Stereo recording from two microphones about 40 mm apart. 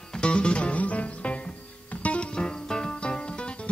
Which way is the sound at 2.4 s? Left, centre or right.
Left.